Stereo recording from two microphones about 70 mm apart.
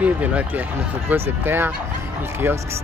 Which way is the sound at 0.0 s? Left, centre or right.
Right.